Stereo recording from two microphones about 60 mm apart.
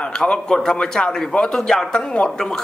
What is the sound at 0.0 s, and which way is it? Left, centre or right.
A man's voice, centre.